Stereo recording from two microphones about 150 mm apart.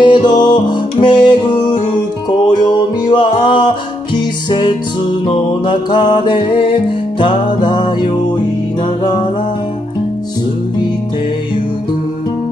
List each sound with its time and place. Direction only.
0.0 s music: 30° left (ahead or behind)